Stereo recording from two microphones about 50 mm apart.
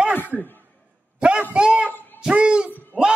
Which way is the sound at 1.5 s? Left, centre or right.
Right.